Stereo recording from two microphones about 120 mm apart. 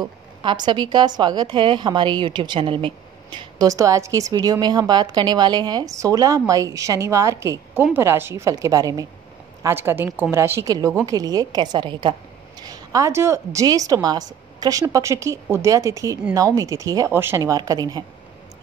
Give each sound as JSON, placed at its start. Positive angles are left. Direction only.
{"t": 0.0, "sound": "a woman's voice", "side_deg": -40}
{"t": 3.6, "sound": "a woman's voice", "side_deg": -25}
{"t": 9.6, "sound": "a woman's voice", "side_deg": -20}
{"t": 11.1, "sound": "a woman's voice", "side_deg": -30}
{"t": 17.4, "sound": "a woman's voice", "side_deg": -30}